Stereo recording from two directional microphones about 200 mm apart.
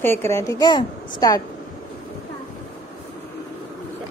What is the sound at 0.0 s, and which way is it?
A woman's voice, 10° left (ahead or behind).